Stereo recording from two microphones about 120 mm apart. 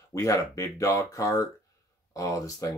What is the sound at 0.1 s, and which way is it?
Speech, 25° left (ahead or behind).